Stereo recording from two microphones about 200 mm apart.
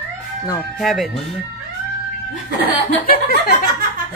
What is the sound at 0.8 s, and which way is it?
Speech, centre (ahead or behind).